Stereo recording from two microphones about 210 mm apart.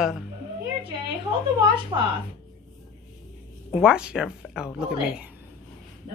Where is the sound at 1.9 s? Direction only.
20° right (ahead or behind).